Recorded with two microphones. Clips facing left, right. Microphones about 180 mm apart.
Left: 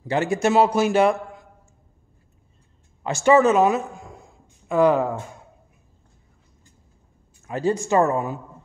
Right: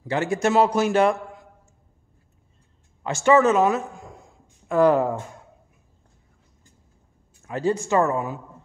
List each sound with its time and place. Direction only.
0.1 s a man's voice: 15° left (ahead or behind)
3.0 s a man's voice: 15° left (ahead or behind)
4.6 s speech: centre (ahead or behind)
7.5 s a man's voice: 15° left (ahead or behind)
8.0 s a woman's voice: 30° left (ahead or behind)